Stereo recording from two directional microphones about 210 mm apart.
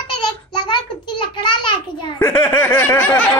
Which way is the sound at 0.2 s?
20° left (ahead or behind).